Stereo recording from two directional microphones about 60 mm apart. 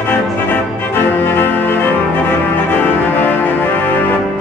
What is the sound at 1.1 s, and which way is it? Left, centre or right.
Music, left.